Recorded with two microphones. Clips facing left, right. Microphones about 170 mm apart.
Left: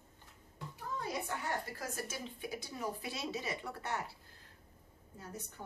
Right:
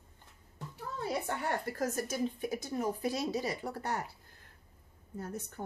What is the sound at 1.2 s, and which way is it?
Speech, 60° right (ahead or behind).